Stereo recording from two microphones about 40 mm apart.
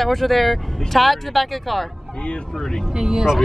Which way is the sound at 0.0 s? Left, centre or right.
Centre.